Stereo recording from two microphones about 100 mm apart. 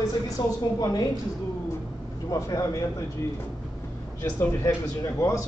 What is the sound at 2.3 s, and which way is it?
Speech, 30° left (ahead or behind).